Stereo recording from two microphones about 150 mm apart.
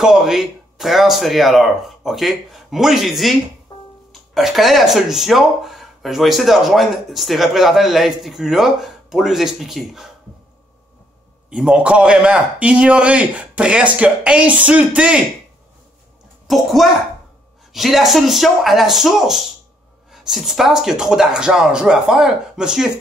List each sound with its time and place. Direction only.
0.0 s speech: 5° right (ahead or behind)
3.7 s music: 30° left (ahead or behind)
4.1 s speech: centre (ahead or behind)
11.5 s a man's voice: 5° right (ahead or behind)
16.4 s a child's voice: centre (ahead or behind)